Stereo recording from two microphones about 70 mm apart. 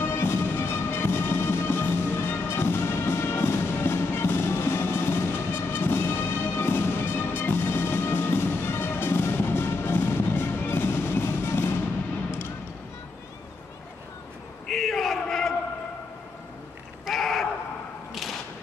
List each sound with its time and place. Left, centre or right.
0.0 s music: left
14.7 s chant: centre
17.0 s a sound: centre